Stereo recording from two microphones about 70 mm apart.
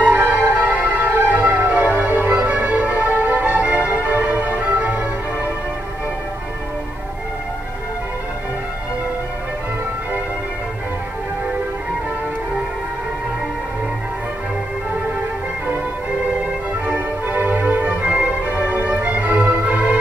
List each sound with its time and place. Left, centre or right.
0.0 s music: right
16.8 s music: right